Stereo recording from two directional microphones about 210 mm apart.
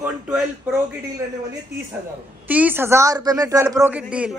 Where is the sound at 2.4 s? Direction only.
10° right (ahead or behind).